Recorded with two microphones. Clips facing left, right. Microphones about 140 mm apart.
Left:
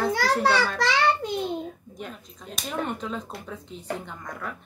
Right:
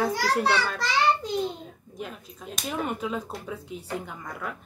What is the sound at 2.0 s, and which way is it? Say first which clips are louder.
Speech: right 2 dB; 5° right (ahead or behind).